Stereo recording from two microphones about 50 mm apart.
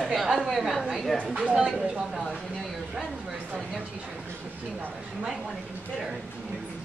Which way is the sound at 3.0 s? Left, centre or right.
Centre.